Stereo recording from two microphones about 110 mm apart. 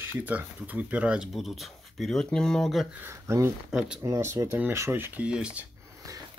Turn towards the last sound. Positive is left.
turn(degrees=-30)  # may be behind; listen again after turning